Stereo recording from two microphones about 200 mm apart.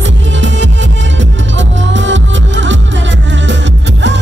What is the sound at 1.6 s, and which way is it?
Music, 65° right (ahead or behind).